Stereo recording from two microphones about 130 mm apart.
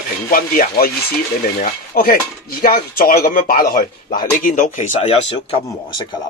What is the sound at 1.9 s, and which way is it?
Speech, 90° left.